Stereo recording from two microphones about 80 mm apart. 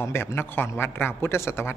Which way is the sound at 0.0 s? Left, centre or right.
Left.